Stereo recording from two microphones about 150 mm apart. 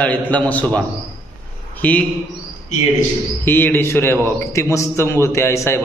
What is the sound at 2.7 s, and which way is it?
Speech, 55° left (ahead or behind).